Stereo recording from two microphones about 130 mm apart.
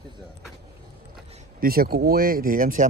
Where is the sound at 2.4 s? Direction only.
90° right.